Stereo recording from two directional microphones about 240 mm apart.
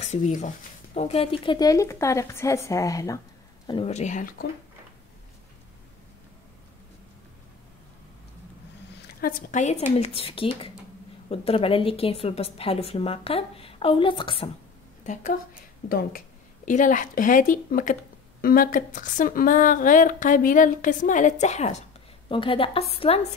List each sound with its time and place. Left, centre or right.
0.0 s a woman's voice: left
9.0 s a woman's voice: left
15.9 s a woman's voice: left